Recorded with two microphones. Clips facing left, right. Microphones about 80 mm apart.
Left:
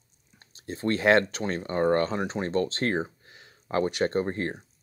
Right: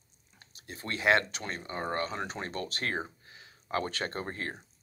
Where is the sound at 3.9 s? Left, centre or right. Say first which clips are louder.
Left 9 dB; centre.